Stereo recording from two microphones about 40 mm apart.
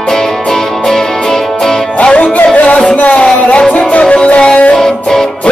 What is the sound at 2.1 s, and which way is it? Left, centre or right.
Music, left.